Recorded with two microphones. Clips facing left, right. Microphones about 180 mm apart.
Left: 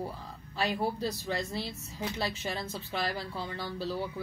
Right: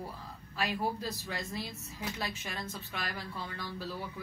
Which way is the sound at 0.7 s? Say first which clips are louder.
Left 4 dB; 30° left (ahead or behind).